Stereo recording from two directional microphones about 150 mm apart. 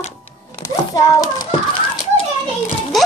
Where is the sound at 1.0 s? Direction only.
25° left (ahead or behind).